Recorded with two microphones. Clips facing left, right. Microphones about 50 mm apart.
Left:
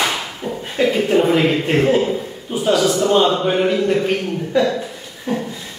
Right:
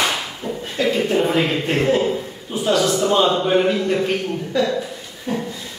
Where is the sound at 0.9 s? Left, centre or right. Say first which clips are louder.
Left 3 dB; centre.